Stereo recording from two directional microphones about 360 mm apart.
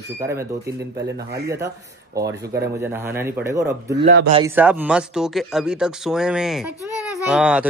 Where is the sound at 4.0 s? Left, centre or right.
Right.